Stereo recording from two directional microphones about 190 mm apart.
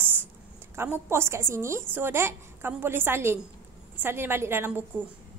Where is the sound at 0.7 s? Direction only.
10° right (ahead or behind).